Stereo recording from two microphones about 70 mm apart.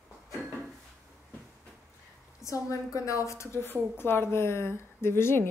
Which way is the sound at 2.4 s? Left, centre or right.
Left.